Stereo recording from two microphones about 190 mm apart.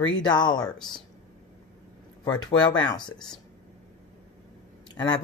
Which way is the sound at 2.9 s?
25° left (ahead or behind).